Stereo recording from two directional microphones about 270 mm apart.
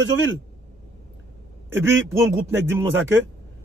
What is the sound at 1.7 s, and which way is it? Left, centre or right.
A man's voice, centre.